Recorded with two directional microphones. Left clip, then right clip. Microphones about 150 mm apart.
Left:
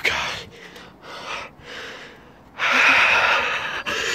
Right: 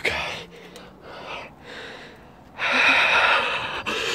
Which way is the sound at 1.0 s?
Centre (ahead or behind).